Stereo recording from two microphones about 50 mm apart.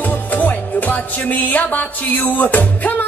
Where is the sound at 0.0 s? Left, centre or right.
Left.